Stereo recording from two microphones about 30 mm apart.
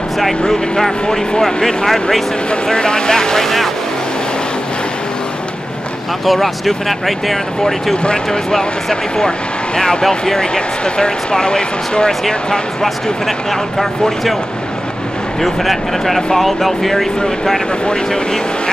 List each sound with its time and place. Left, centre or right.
0.5 s speech: centre
1.4 s speech: left
3.4 s speech: centre
6.2 s speech: centre
7.9 s speech: left
8.3 s speech: centre
10.2 s speech: left
13.5 s speech: centre
15.4 s speech: centre